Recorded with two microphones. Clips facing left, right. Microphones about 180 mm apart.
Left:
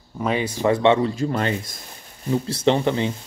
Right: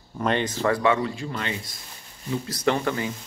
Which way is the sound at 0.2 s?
5° left (ahead or behind).